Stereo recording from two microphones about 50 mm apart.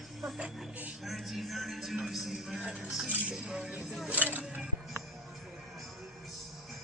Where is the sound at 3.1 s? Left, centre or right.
Right.